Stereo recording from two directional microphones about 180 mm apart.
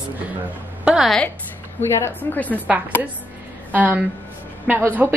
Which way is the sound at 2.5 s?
10° right (ahead or behind).